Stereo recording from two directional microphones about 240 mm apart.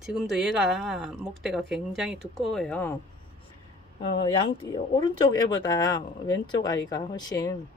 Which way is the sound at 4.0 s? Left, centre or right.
Left.